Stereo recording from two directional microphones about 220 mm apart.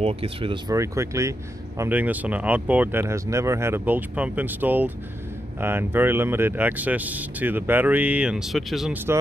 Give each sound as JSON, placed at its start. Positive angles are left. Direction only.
{"t": 0.0, "sound": "speech", "side_deg": -25}